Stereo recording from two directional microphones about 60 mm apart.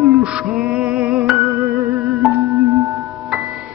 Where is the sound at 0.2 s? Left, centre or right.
Centre.